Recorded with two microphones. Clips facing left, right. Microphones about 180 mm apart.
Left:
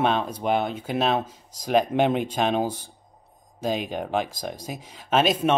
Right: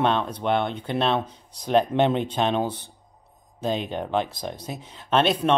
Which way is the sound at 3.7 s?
25° right (ahead or behind).